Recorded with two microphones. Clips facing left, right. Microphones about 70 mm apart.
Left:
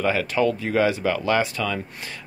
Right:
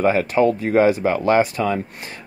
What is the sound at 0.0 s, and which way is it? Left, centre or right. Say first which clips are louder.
Speech: right 5 dB; right.